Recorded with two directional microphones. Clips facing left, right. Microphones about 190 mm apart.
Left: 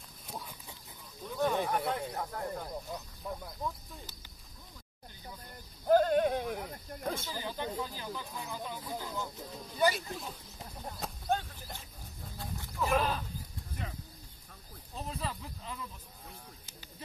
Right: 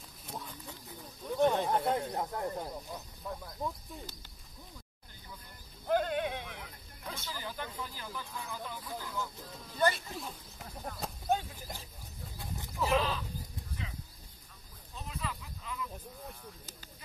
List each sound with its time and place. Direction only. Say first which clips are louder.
0.3 s a sound: right 1 dB; 10° left (ahead or behind)
1.4 s speech: right 2 dB; 25° right (ahead or behind)
5.9 s snake: left 6 dB; 40° left (ahead or behind)
7.3 s speech: left 4 dB; 20° left (ahead or behind)
9.8 s speech: left 1 dB; 5° left (ahead or behind)
11.0 s a sound: right 1 dB; 5° right (ahead or behind)
12.9 s speech: even; 50° left (ahead or behind)
13.8 s bird: left 3 dB; 50° left (ahead or behind)
15.0 s a sound: left 2 dB; 35° left (ahead or behind)